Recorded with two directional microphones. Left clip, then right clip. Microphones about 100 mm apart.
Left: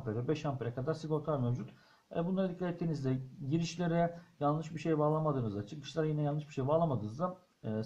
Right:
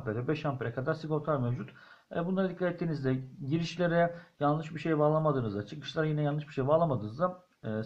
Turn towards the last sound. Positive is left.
turn(degrees=-5)  # may be behind; listen again after turning